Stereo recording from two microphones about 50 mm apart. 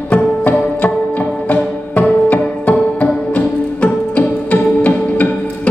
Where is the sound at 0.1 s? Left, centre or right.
Left.